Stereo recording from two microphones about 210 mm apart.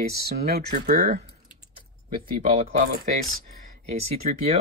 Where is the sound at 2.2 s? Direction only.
25° right (ahead or behind).